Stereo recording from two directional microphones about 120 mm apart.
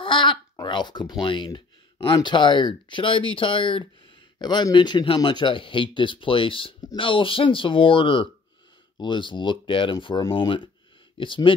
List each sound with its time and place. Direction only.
0.0 s speech: 40° left (ahead or behind)